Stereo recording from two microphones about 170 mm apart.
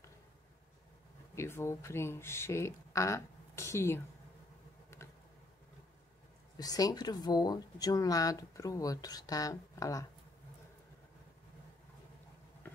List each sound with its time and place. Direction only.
1.3 s speech: 15° left (ahead or behind)
6.5 s speech: 20° left (ahead or behind)
12.6 s a sound: 10° left (ahead or behind)